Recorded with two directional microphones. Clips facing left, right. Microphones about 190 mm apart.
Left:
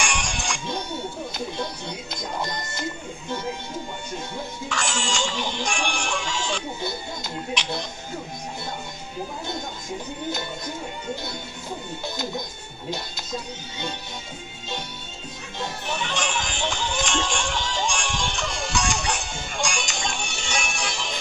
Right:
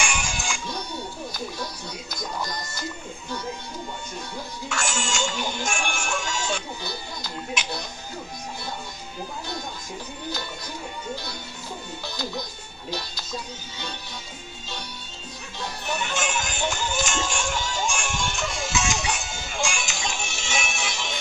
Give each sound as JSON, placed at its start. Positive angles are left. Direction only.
{"t": 0.0, "sound": "music", "side_deg": -5}
{"t": 0.7, "sound": "music", "side_deg": 25}
{"t": 2.1, "sound": "music", "side_deg": 25}
{"t": 4.6, "sound": "music", "side_deg": 0}
{"t": 15.9, "sound": "music", "side_deg": -5}